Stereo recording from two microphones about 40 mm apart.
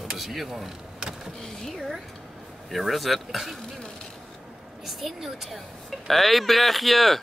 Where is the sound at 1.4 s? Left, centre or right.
Centre.